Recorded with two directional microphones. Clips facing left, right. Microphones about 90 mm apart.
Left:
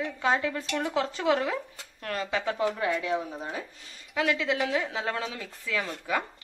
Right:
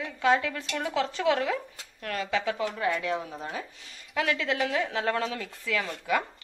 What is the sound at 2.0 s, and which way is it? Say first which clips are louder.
Speech: even; 30° left (ahead or behind).